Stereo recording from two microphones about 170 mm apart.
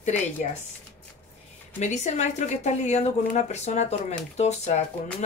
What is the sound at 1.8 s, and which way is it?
A woman's voice, 40° left (ahead or behind).